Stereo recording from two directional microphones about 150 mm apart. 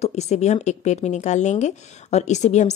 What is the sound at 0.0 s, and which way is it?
Speech, 45° left (ahead or behind).